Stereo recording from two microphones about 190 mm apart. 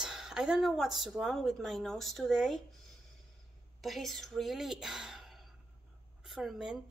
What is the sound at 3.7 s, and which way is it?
A woman's voice, centre (ahead or behind).